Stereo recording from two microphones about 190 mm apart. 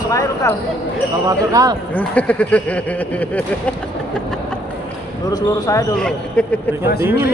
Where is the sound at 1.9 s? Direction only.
5° left (ahead or behind).